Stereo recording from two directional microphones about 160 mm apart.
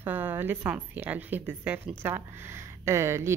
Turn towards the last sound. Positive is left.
turn(degrees=-15)  # may be behind; listen again after turning